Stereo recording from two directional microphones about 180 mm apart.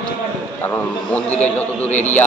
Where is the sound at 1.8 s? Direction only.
40° left (ahead or behind).